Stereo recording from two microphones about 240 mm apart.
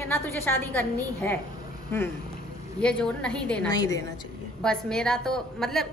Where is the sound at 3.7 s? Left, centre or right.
Centre.